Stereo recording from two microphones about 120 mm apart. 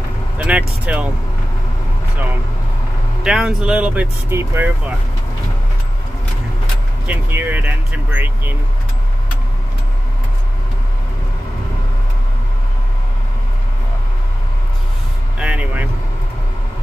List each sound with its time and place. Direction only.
0.4 s speech: 10° right (ahead or behind)
3.3 s speech: 5° right (ahead or behind)
7.1 s speech: 15° right (ahead or behind)
15.3 s speech: 10° right (ahead or behind)